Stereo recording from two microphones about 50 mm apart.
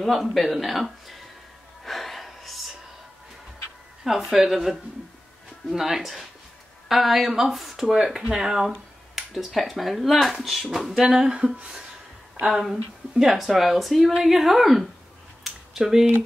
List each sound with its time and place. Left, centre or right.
0.0 s speech: centre
1.9 s gasp: centre
4.0 s speech: centre
11.1 s speech: centre
15.4 s a sound: centre